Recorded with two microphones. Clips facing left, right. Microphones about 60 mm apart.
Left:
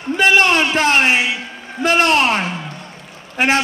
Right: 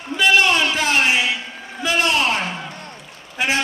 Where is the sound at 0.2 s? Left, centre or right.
Left.